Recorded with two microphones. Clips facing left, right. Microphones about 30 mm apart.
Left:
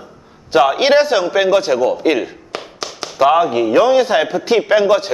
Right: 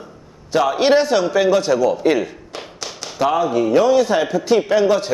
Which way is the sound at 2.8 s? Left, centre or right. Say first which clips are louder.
Left 1 dB; centre.